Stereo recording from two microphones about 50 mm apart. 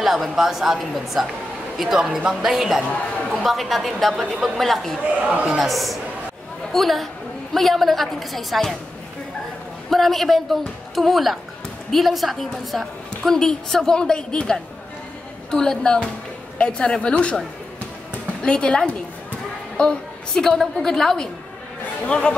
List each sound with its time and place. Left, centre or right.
0.0 s a woman's voice: centre
5.0 s speech: right
5.4 s a woman's voice: centre
9.8 s a woman's voice: centre; by 17.4 s left
18.4 s a woman's voice: centre
22.0 s a woman's voice: centre